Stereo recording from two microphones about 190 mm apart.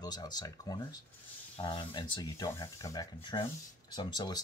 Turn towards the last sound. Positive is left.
turn(degrees=20)  # may be behind; listen again after turning